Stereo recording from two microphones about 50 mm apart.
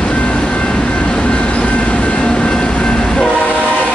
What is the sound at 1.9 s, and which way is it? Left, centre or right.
Train, left.